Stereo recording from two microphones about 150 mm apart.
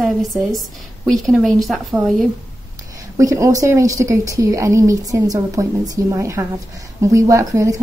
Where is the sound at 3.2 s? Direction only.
20° right (ahead or behind).